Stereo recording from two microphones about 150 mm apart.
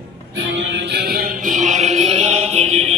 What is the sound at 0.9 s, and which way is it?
Music, 90° right.